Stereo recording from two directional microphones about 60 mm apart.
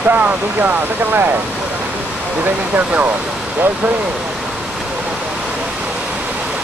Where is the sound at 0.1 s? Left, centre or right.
Right.